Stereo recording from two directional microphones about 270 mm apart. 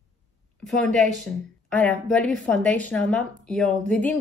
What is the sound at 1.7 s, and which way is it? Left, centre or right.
A woman's voice, centre.